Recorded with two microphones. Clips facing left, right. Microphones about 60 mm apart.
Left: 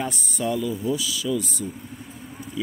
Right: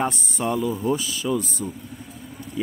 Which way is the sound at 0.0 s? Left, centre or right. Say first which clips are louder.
Right 3 dB; right.